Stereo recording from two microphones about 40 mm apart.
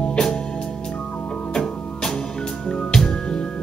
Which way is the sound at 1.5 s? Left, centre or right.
Centre.